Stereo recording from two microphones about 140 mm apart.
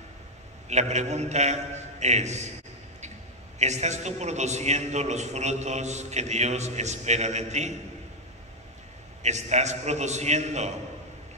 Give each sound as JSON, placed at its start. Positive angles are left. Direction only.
{"t": 0.7, "sound": "a man's voice", "side_deg": -55}
{"t": 3.5, "sound": "a man's voice", "side_deg": -55}
{"t": 9.2, "sound": "a man's voice", "side_deg": -55}